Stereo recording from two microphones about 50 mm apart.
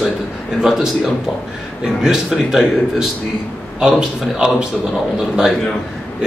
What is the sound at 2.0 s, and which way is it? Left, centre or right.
A man's voice, centre.